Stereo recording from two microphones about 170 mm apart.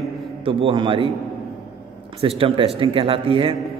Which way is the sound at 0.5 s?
30° right (ahead or behind).